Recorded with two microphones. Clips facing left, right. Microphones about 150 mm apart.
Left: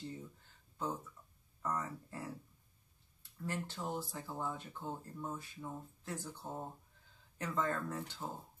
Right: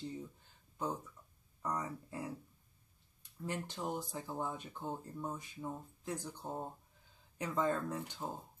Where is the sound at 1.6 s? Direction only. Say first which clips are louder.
Even; 15° right (ahead or behind).